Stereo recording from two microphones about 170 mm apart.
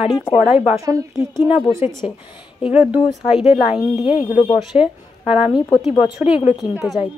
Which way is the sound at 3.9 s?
35° left (ahead or behind).